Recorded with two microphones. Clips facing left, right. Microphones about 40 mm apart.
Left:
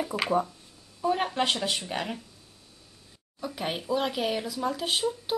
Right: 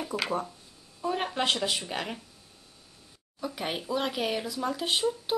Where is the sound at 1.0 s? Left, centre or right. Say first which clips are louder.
Left 2 dB; centre.